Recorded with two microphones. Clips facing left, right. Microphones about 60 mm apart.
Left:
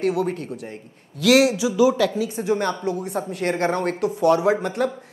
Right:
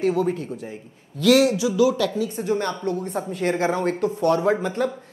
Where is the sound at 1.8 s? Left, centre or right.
Left; by 4.2 s centre.